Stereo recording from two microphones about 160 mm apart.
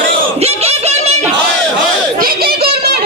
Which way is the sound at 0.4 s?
40° right (ahead or behind).